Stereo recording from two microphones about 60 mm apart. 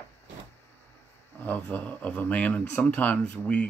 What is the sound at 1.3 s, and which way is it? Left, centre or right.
Speech, left.